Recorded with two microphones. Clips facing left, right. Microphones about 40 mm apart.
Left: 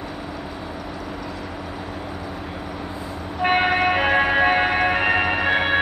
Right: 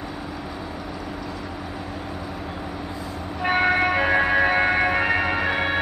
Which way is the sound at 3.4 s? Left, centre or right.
Left.